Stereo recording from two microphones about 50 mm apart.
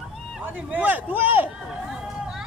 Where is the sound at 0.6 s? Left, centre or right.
Right.